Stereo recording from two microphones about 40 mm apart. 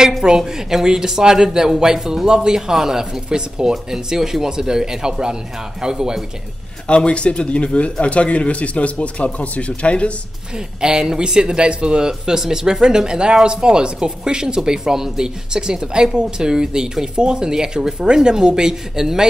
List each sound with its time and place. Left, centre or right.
0.2 s speech: centre
7.1 s speech: left
10.8 s speech: centre
12.1 s speech: centre